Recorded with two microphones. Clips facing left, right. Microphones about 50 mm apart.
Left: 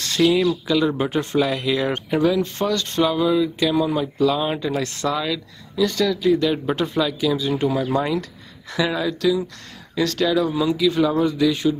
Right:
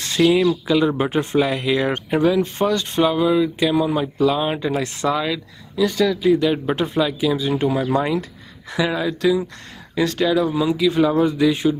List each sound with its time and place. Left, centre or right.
0.0 s speech: centre